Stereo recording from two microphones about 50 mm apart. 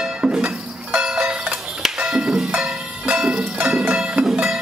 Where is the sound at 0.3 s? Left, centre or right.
Centre.